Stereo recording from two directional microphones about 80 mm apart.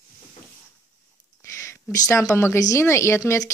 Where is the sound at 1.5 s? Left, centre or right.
Left.